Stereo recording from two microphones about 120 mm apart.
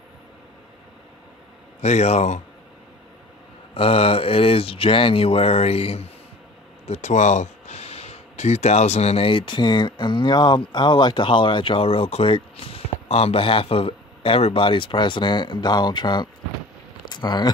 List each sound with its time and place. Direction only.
1.8 s speech: 65° left (ahead or behind)
3.7 s speech: 55° left (ahead or behind)
6.9 s speech: 80° left; by 17.5 s 40° left (ahead or behind)